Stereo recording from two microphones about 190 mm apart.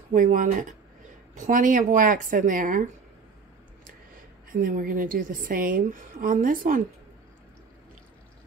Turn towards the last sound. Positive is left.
turn(degrees=-45)  # may be behind; listen again after turning